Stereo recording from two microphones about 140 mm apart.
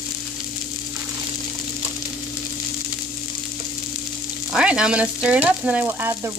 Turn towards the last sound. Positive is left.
turn(degrees=-15)  # may be behind; listen again after turning